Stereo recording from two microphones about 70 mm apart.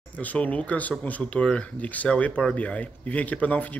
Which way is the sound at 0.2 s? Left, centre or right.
Left.